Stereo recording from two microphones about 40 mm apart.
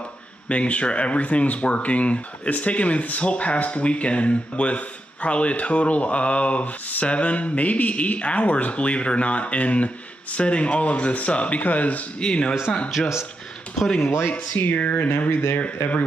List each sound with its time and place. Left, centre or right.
0.5 s speech: left
12.2 s speech: left
14.6 s speech: left
15.0 s speech: left